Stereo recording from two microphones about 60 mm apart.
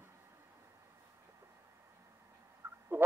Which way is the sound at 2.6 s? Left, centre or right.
Right.